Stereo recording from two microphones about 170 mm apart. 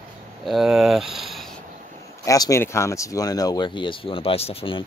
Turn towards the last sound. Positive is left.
turn(degrees=35)  # may be behind; listen again after turning